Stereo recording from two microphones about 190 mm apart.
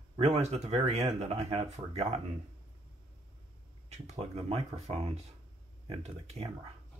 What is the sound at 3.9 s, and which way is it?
Speech, 35° right (ahead or behind).